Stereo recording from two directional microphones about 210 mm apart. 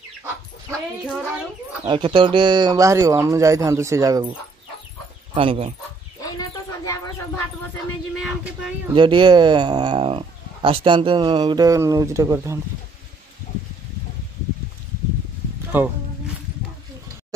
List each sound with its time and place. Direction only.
1.9 s speech: 25° right (ahead or behind)
5.3 s speech: 25° right (ahead or behind)
6.2 s a sound: 15° left (ahead or behind)
8.2 s speech: centre (ahead or behind)
8.9 s speech: 25° right (ahead or behind)
15.7 s speech: 10° right (ahead or behind)